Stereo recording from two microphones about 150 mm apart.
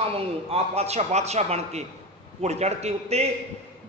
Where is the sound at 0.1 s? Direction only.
45° right (ahead or behind).